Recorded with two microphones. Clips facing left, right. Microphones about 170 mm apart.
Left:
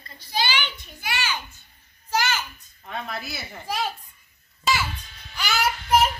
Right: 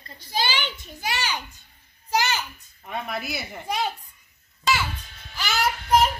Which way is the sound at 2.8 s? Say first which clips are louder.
Right 2 dB; 15° right (ahead or behind).